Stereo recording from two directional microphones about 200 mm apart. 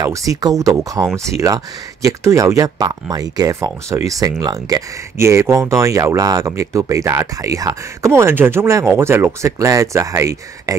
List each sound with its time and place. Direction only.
0.0 s speech: 15° right (ahead or behind)